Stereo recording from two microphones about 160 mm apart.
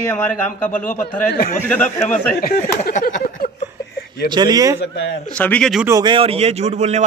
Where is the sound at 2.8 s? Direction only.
55° left (ahead or behind).